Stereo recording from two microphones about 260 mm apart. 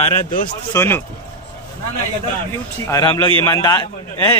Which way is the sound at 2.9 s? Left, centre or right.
Centre.